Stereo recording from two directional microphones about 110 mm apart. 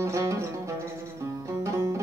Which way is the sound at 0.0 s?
25° right (ahead or behind).